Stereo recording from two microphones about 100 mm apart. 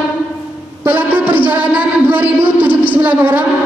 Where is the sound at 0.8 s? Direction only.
20° right (ahead or behind).